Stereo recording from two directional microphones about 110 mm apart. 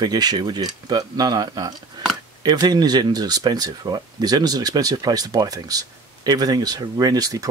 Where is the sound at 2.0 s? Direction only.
40° right (ahead or behind).